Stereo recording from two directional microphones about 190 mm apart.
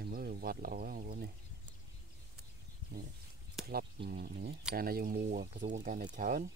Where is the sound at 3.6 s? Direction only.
55° right (ahead or behind).